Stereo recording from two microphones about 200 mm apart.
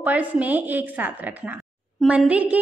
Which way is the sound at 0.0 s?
5° right (ahead or behind).